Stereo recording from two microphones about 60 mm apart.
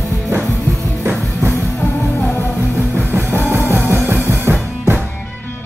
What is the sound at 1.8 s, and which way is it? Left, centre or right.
Music, left.